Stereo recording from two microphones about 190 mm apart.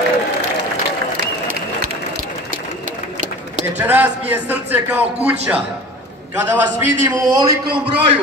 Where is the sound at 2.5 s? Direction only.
45° right (ahead or behind).